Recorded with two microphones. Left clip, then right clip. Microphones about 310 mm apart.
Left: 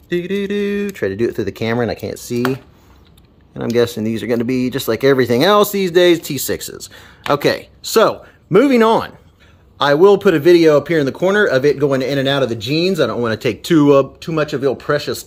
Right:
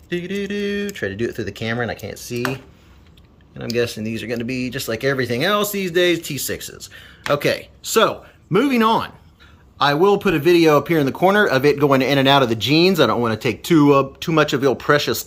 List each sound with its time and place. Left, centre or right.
0.1 s speech: centre
3.5 s a man's voice: centre